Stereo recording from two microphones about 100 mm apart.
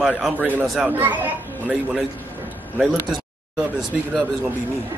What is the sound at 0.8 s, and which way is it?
Speech, 15° right (ahead or behind).